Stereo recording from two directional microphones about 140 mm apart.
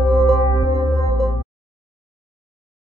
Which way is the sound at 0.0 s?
25° left (ahead or behind).